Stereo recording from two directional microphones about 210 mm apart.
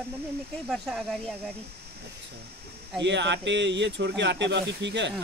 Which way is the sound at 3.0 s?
55° right (ahead or behind).